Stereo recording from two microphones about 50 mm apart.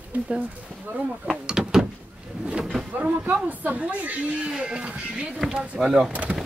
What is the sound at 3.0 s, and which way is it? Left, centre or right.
Speech, right.